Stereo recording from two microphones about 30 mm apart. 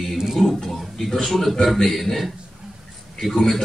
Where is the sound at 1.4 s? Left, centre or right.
Centre.